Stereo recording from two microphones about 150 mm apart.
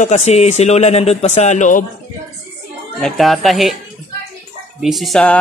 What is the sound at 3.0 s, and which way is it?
Speech, centre (ahead or behind).